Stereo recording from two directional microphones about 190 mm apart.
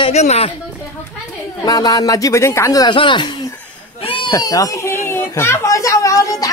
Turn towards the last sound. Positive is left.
turn(degrees=15)  # may be behind; listen again after turning